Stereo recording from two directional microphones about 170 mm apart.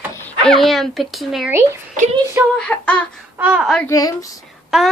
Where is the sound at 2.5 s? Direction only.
5° left (ahead or behind).